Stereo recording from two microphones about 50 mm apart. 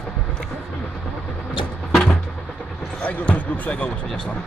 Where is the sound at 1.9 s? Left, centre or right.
Centre.